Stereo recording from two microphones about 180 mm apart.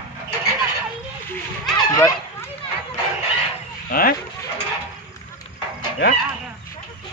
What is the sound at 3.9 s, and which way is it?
Speech, 55° left (ahead or behind).